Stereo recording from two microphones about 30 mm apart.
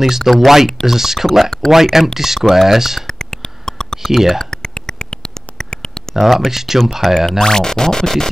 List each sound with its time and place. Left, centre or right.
0.2 s speech: centre
3.1 s a sound: centre
4.0 s speech: centre
4.5 s a sound: left
6.1 s speech: centre
7.2 s speech: centre